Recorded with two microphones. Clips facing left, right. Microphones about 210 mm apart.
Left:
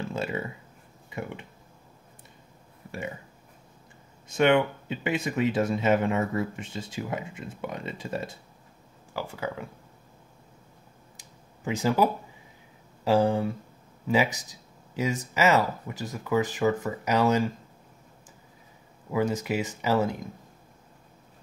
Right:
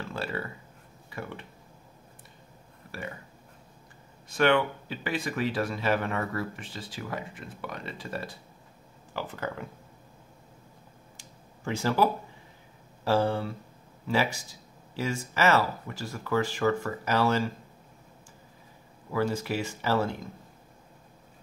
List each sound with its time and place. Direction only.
0.1 s speech: 20° left (ahead or behind)
2.9 s speech: 20° left (ahead or behind)
4.4 s speech: 20° left (ahead or behind)
9.1 s speech: 10° left (ahead or behind)
11.1 s a sound: 15° left (ahead or behind)
13.0 s speech: 15° left (ahead or behind)
19.1 s speech: 20° left (ahead or behind)